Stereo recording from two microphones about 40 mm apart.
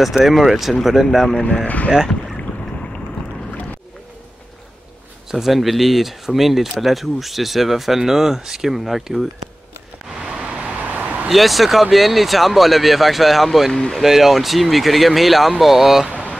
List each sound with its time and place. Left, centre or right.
0.0 s speech: centre
1.4 s speech: left
5.3 s speech: centre
10.3 s vehicle: right
10.8 s vehicle: right
11.2 s speech: centre